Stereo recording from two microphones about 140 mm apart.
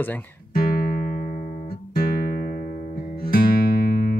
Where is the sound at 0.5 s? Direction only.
90° left.